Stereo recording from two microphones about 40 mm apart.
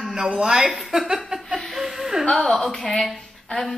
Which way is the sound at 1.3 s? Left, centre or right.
Right.